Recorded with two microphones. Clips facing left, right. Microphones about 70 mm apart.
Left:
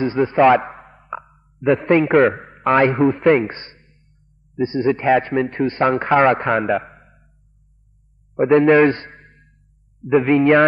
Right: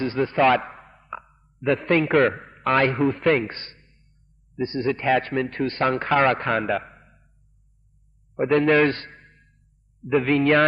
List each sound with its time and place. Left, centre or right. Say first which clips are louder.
0.0 s a man's voice: left 5 dB; centre
8.5 s a man's voice: left 6 dB; centre